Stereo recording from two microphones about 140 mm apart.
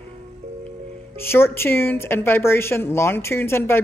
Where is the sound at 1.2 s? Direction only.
15° left (ahead or behind).